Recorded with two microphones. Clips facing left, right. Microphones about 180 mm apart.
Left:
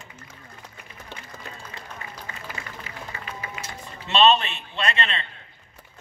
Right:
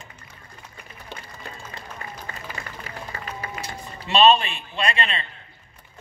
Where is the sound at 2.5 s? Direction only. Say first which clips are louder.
Right 2 dB; 40° right (ahead or behind).